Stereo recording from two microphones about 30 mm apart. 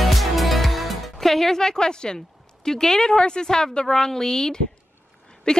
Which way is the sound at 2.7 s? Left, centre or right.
Centre.